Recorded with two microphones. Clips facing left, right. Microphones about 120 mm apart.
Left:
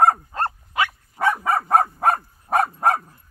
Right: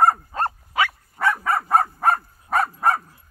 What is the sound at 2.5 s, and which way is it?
Dog, 30° left (ahead or behind).